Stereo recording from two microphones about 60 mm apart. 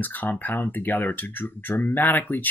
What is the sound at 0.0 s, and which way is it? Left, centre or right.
Speech, left.